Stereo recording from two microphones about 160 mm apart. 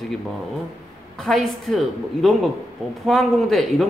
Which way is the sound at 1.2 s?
Centre (ahead or behind).